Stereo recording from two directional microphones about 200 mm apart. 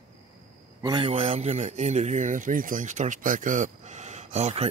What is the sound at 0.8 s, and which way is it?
Speech, 25° right (ahead or behind).